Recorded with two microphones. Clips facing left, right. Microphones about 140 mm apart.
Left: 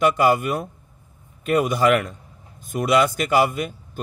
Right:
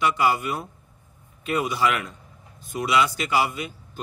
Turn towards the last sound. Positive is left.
turn(degrees=50)  # may be behind; listen again after turning